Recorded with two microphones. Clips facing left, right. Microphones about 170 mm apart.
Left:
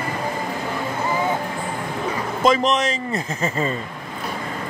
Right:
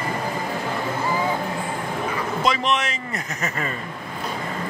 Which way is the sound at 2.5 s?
40° left (ahead or behind).